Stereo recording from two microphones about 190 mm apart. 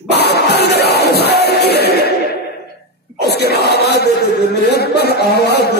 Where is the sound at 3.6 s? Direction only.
60° left (ahead or behind).